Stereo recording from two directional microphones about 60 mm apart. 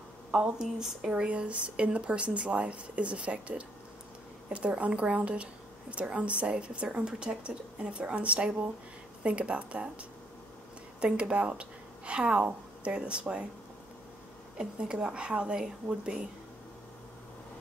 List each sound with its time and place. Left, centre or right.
0.3 s a woman's voice: centre
14.6 s a woman's voice: centre